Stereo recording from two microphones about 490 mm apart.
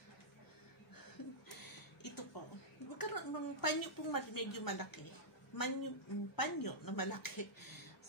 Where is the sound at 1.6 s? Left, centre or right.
Left.